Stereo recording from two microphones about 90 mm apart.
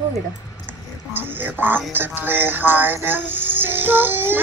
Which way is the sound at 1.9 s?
20° right (ahead or behind).